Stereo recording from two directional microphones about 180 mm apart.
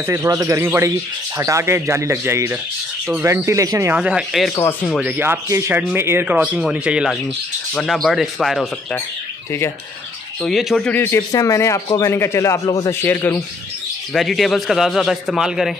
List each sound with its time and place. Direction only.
0.0 s speech: 15° right (ahead or behind); by 4.6 s centre (ahead or behind)
5.0 s a man's voice: 10° right (ahead or behind)
10.4 s a man's voice: centre (ahead or behind)
10.9 s speech: 10° left (ahead or behind)
14.1 s a man's voice: centre (ahead or behind)